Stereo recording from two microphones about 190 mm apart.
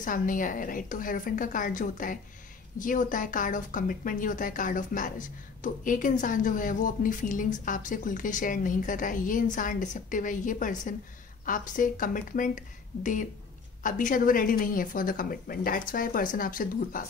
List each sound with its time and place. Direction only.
0.0 s a woman's voice: 45° left (ahead or behind)